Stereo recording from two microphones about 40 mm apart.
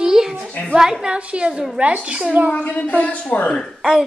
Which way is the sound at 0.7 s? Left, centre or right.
Centre.